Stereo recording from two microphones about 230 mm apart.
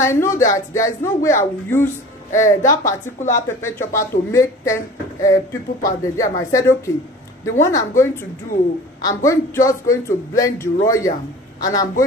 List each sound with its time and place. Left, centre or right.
0.0 s speech: centre